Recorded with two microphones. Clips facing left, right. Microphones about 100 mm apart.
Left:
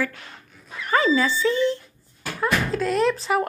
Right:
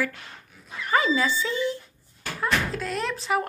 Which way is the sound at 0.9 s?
10° right (ahead or behind).